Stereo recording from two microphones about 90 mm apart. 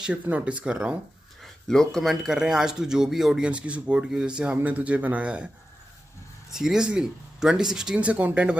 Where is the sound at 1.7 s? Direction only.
5° left (ahead or behind); by 5.5 s 10° right (ahead or behind).